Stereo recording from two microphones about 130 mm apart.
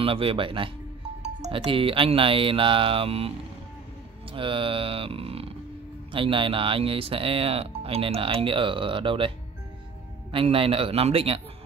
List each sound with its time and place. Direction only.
0.0 s speech: 45° right (ahead or behind)
1.2 s speech: 55° right (ahead or behind)
10.3 s speech: 45° right (ahead or behind)